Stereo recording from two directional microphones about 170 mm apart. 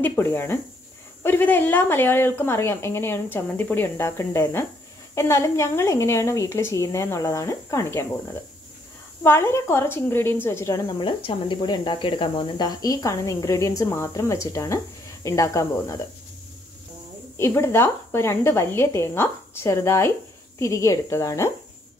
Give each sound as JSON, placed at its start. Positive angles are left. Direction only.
{"t": 0.0, "sound": "a woman's voice", "side_deg": 15}
{"t": 9.2, "sound": "a woman's voice", "side_deg": 15}
{"t": 17.4, "sound": "a woman's voice", "side_deg": 15}